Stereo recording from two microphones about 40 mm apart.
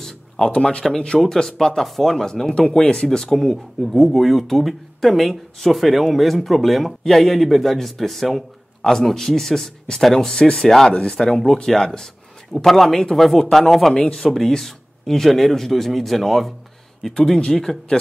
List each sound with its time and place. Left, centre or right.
0.6 s speech: left
3.8 s speech: centre